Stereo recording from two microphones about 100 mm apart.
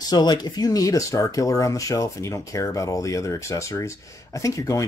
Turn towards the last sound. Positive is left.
turn(degrees=30)  # may be behind; listen again after turning